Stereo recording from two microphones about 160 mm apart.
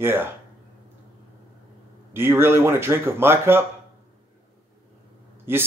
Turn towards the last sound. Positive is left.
turn(degrees=-15)  # may be behind; listen again after turning